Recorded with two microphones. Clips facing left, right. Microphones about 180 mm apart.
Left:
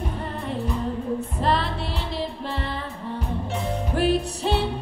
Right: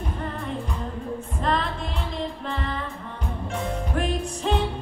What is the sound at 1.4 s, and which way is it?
Music, 35° left (ahead or behind).